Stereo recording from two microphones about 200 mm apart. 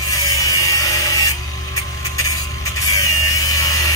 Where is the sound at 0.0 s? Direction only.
15° left (ahead or behind).